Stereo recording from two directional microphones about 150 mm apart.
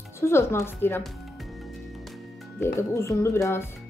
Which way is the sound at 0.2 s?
15° left (ahead or behind).